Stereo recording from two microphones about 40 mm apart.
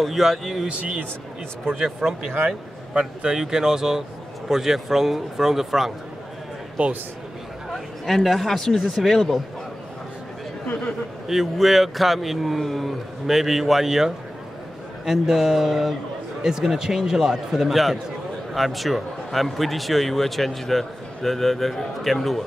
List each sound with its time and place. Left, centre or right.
0.0 s speech: centre
2.0 s a man's voice: centre
2.9 s a man's voice: right; by 5.9 s centre
6.8 s a man's voice: right
7.7 s speech: centre
11.2 s a man's voice: centre